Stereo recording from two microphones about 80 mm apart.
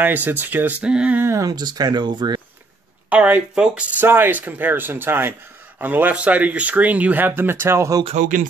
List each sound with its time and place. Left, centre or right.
0.0 s speech: right
1.3 s speech: right
3.1 s speech: centre
4.0 s speech: right